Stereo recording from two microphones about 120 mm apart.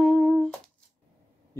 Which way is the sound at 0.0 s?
5° left (ahead or behind).